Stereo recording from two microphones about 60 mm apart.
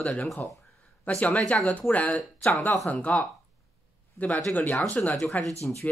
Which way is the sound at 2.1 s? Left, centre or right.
Centre.